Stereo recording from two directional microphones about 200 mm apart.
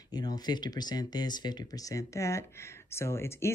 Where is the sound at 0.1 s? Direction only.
20° left (ahead or behind).